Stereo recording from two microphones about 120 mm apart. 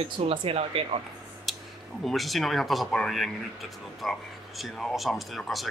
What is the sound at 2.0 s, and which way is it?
Speech, centre (ahead or behind).